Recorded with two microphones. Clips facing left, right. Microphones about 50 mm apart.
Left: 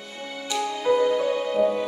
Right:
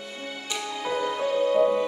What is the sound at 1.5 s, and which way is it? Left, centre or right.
Music, centre.